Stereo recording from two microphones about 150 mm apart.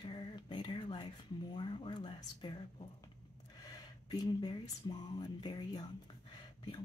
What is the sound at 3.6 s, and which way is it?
Speech, 25° left (ahead or behind).